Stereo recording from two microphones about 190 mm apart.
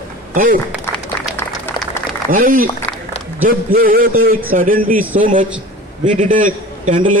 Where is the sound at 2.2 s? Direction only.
50° right (ahead or behind).